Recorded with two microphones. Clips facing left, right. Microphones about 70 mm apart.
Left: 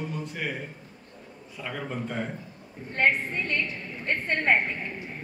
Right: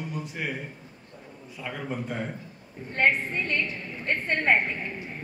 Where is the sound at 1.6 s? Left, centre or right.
Centre.